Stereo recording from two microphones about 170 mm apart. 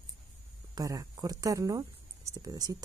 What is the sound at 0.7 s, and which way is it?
Speech, 20° right (ahead or behind).